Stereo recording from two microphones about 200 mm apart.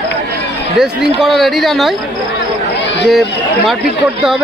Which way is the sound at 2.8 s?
60° left (ahead or behind).